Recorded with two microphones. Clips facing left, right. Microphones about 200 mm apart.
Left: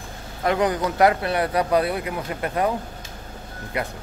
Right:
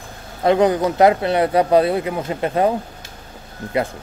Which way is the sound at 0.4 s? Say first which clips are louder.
Right 6 dB; 25° right (ahead or behind).